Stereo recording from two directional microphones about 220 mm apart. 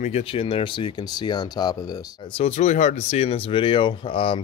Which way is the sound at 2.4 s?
30° left (ahead or behind).